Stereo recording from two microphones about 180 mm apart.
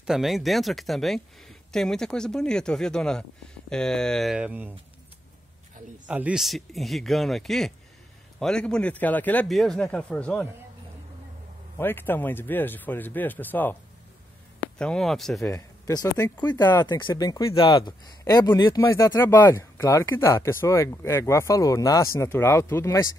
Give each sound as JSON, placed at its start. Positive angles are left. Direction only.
{"t": 0.0, "sound": "speech", "side_deg": 0}
{"t": 6.0, "sound": "speech", "side_deg": -5}
{"t": 11.8, "sound": "speech", "side_deg": 10}
{"t": 14.8, "sound": "speech", "side_deg": 5}
{"t": 15.5, "sound": "speech", "side_deg": 20}